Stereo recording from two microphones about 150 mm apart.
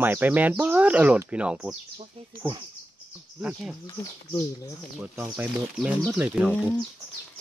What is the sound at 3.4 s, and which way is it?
Speech, 5° right (ahead or behind).